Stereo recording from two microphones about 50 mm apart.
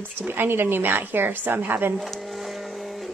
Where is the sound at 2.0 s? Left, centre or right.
Centre.